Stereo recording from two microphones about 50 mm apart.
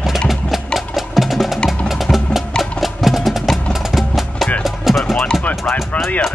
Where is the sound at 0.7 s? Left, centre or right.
Centre.